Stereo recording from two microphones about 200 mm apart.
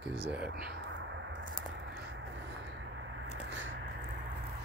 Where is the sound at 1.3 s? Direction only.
70° right (ahead or behind).